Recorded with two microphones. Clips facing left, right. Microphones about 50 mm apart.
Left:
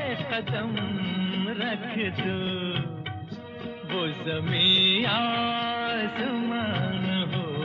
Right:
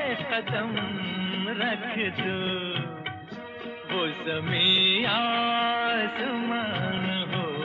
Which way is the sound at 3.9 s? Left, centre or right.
Centre.